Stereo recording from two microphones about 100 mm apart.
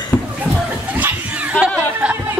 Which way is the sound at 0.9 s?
15° right (ahead or behind).